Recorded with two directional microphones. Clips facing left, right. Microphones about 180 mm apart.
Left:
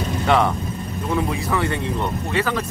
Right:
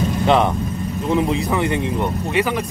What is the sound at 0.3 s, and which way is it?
Speech, 20° right (ahead or behind).